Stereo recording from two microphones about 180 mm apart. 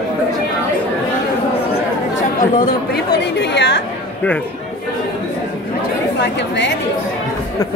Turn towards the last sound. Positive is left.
turn(degrees=75)  # may be behind; listen again after turning